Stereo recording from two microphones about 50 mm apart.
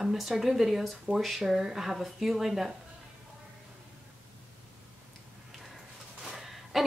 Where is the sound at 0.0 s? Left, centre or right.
Centre.